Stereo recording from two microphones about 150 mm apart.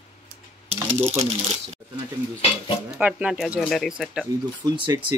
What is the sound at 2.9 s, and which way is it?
Speech, 5° right (ahead or behind).